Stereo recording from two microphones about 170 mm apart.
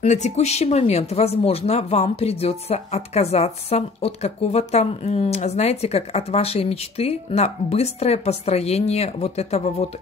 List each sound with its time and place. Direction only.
0.0 s speech: 40° left (ahead or behind)